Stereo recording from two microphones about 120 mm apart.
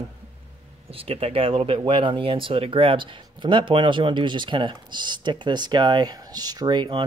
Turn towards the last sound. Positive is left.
turn(degrees=-40)  # may be behind; listen again after turning